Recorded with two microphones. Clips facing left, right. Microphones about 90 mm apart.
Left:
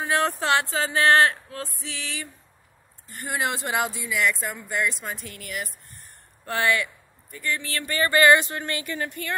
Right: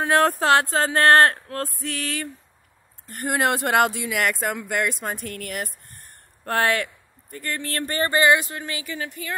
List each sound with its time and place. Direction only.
0.0 s speech: 55° right (ahead or behind); by 8.1 s 40° right (ahead or behind)
8.1 s a sound: 20° right (ahead or behind)
8.4 s speech: 5° right (ahead or behind)